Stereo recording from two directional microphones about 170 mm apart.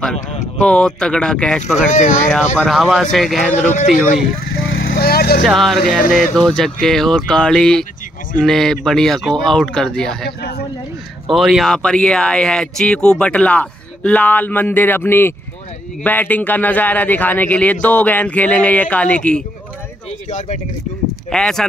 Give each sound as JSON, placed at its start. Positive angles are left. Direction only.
{"t": 0.6, "sound": "speech", "side_deg": 5}
{"t": 1.6, "sound": "speech", "side_deg": 45}
{"t": 2.2, "sound": "speech", "side_deg": 10}
{"t": 3.5, "sound": "speech", "side_deg": 40}
{"t": 4.5, "sound": "vehicle", "side_deg": 60}
{"t": 5.4, "sound": "speech", "side_deg": 0}
{"t": 11.3, "sound": "speech", "side_deg": 0}
{"t": 20.1, "sound": "speech", "side_deg": 45}
{"t": 21.3, "sound": "speech", "side_deg": 5}